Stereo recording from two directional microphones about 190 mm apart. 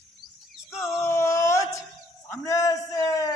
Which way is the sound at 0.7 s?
15° left (ahead or behind).